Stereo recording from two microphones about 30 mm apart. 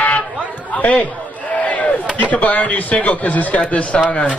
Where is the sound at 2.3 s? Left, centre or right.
Left.